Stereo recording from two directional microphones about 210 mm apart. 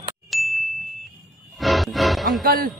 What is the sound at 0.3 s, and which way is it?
Ding, centre (ahead or behind).